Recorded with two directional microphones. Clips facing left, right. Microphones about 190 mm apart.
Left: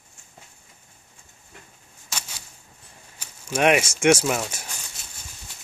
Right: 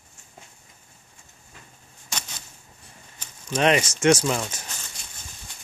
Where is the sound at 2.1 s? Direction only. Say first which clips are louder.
Right 1 dB; 10° left (ahead or behind).